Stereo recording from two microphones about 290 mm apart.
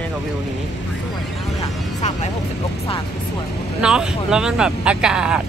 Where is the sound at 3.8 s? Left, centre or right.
Centre.